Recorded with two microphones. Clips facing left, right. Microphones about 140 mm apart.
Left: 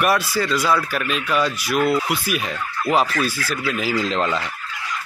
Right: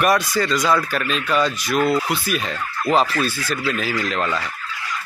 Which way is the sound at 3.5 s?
10° left (ahead or behind).